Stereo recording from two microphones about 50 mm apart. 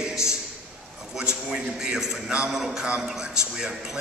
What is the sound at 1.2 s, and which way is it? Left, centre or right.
A man's voice, centre.